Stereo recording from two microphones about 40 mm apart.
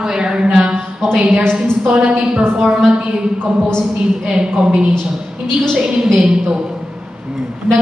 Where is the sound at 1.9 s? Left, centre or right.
Right.